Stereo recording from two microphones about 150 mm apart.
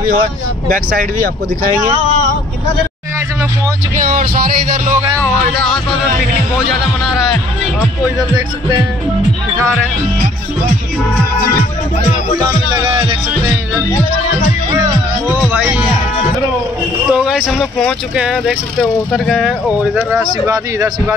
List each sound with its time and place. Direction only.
0.1 s speech: 70° right (ahead or behind)
3.9 s speech: 65° right (ahead or behind)
5.2 s speech: 5° left (ahead or behind)
12.4 s speech: 20° right (ahead or behind)
15.5 s speech: 10° right (ahead or behind)
17.1 s speech: 5° right (ahead or behind)
20.4 s speech: 20° right (ahead or behind)